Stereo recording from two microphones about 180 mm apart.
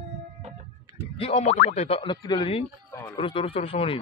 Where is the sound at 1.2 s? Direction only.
35° left (ahead or behind).